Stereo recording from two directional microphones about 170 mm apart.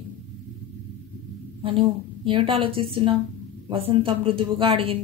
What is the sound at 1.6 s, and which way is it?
A woman's voice, 30° right (ahead or behind).